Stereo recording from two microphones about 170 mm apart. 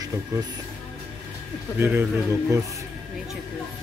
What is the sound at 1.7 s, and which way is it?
Speech, 10° right (ahead or behind).